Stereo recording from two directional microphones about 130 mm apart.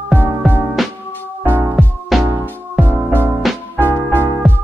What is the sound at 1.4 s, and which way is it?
Music, 15° right (ahead or behind).